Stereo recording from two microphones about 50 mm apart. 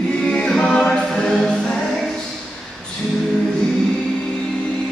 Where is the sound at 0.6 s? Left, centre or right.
Centre.